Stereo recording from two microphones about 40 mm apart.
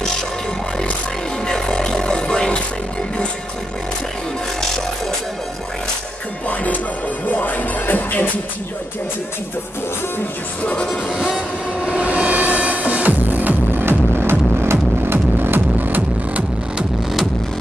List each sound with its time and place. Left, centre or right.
1.7 s a sound: left
7.2 s music: left
11.1 s train: centre
11.8 s music: right
13.8 s music: right